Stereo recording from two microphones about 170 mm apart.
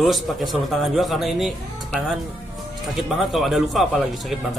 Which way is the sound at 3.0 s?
Centre (ahead or behind).